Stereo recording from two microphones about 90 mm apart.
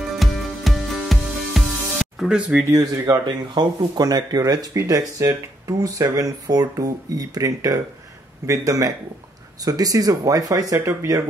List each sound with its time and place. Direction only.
0.2 s music: centre (ahead or behind)
3.1 s speech: 55° right (ahead or behind); by 11.2 s 35° right (ahead or behind)